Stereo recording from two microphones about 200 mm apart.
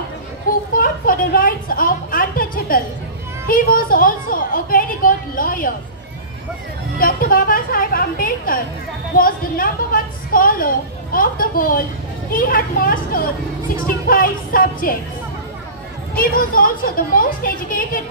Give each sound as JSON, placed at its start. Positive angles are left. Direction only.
{"t": 0.5, "sound": "a woman's voice", "side_deg": 45}
{"t": 7.0, "sound": "a woman's voice", "side_deg": 45}
{"t": 16.2, "sound": "a woman's voice", "side_deg": 45}